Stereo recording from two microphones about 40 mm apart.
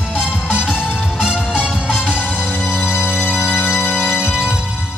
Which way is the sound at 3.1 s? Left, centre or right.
Left.